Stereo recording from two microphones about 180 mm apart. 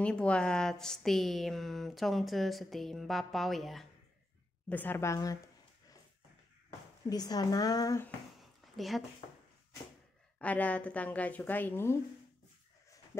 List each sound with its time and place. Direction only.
0.0 s a woman's voice: 5° left (ahead or behind)
7.1 s speech: 20° left (ahead or behind)
8.4 s a sound: centre (ahead or behind)
10.4 s a woman's voice: 10° left (ahead or behind)
13.1 s speech: 15° left (ahead or behind)